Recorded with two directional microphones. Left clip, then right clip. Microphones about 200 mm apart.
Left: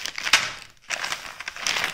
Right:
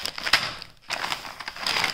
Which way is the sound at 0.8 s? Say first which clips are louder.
Even; 5° right (ahead or behind).